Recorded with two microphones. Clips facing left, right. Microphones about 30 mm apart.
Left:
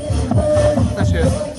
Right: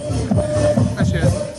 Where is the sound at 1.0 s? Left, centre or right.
Centre.